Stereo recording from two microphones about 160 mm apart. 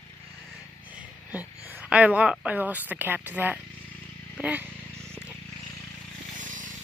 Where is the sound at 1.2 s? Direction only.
10° right (ahead or behind).